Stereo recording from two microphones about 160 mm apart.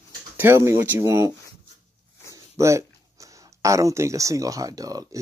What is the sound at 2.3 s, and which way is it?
Speech, 20° right (ahead or behind).